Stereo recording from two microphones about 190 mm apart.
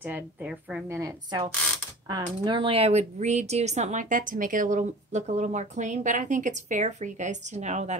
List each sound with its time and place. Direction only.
0.0 s a woman's voice: 10° right (ahead or behind); by 8.0 s 35° right (ahead or behind)